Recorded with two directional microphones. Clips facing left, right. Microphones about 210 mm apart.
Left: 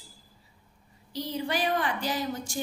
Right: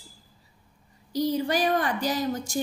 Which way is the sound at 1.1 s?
40° right (ahead or behind).